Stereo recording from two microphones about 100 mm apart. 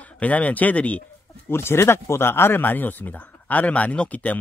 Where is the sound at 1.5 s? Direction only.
25° left (ahead or behind).